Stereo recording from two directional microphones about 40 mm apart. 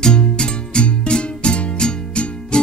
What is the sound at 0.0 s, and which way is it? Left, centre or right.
Music, left.